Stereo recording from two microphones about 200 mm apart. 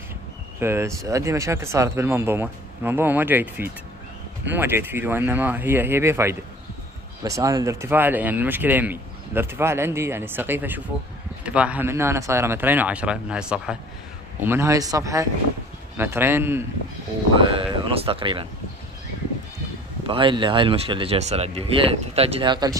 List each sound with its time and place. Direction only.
0.6 s speech: 10° right (ahead or behind)
17.4 s speech: 25° right (ahead or behind)
20.1 s speech: 25° right (ahead or behind)